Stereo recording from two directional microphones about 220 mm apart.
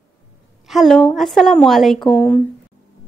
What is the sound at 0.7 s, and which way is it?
A woman's voice, centre (ahead or behind).